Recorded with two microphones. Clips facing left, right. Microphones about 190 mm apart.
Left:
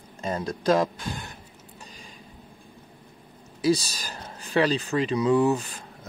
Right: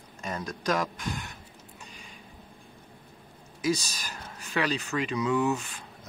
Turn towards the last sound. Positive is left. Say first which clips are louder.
# left 5 dB
turn(degrees=35)  # may be behind; listen again after turning